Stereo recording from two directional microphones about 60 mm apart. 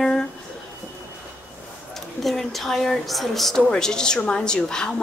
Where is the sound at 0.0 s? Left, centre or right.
Centre.